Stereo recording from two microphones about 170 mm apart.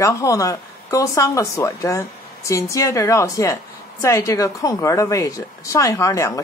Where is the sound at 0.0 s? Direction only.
20° left (ahead or behind).